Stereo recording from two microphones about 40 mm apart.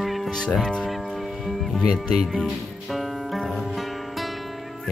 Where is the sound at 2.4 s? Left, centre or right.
Centre.